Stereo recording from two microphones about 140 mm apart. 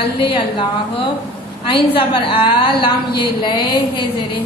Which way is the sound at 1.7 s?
40° left (ahead or behind).